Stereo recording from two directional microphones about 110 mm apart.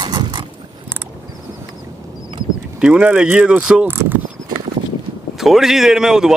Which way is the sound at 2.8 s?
10° right (ahead or behind).